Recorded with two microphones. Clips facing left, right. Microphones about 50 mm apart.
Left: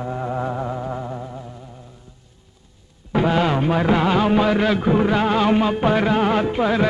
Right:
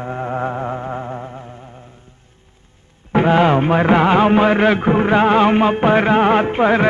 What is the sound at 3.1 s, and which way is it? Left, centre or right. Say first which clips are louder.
Music: right 5 dB; right.